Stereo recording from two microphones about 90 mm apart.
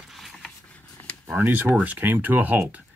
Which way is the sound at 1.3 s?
25° right (ahead or behind).